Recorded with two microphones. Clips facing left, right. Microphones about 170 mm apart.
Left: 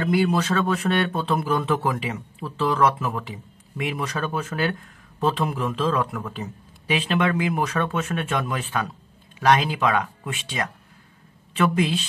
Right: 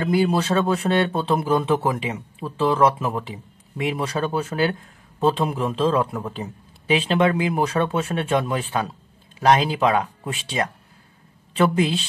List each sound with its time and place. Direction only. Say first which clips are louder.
0.0 s speech: right 1 dB; 25° right (ahead or behind)